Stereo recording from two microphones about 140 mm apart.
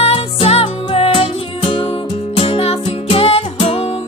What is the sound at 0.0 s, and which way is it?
Music, 45° left (ahead or behind).